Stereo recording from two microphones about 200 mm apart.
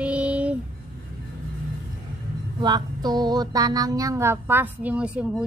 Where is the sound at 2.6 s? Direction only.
20° right (ahead or behind).